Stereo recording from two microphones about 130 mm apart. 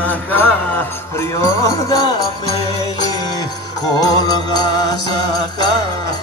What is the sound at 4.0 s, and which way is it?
Music, 30° left (ahead or behind).